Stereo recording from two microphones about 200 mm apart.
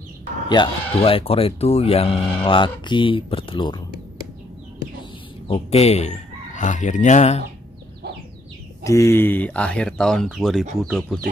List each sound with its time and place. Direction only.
0.5 s speech: 25° left (ahead or behind)
5.5 s fowl: 30° left (ahead or behind)
8.8 s speech: 15° left (ahead or behind)